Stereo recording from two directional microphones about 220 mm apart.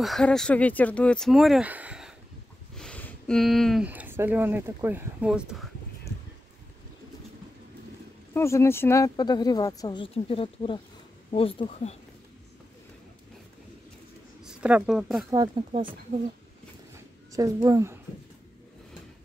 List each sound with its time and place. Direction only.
0.0 s speech: centre (ahead or behind)
8.3 s speech: 10° left (ahead or behind)
14.4 s speech: 5° right (ahead or behind)
15.3 s speech: 20° right (ahead or behind)
17.3 s speech: 15° right (ahead or behind)